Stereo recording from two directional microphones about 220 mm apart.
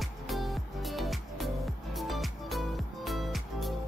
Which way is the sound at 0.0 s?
Centre (ahead or behind).